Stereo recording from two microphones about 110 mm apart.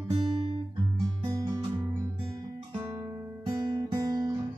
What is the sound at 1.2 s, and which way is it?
Music, 30° right (ahead or behind).